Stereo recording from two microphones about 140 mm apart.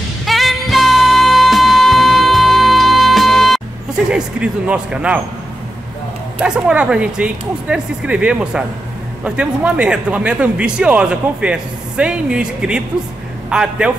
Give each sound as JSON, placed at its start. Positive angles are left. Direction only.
{"t": 0.2, "sound": "music", "side_deg": 0}
{"t": 4.1, "sound": "a man's voice", "side_deg": -5}
{"t": 6.4, "sound": "a man's voice", "side_deg": -5}